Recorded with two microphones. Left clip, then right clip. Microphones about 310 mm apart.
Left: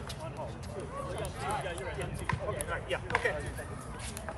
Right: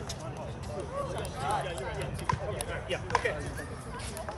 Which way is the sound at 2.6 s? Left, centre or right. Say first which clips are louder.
Even; centre.